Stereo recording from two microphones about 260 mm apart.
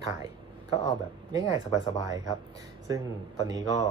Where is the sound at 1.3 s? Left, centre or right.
Centre.